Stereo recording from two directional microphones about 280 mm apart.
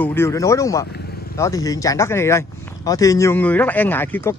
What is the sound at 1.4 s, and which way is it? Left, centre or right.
Speech, centre.